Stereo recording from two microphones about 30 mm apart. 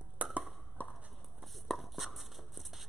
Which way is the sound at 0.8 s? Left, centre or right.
Left.